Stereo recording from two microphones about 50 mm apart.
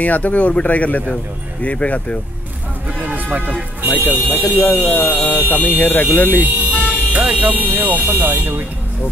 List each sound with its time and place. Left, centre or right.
0.0 s speech: left
3.0 s music: right
3.9 s speech: left
7.1 s speech: right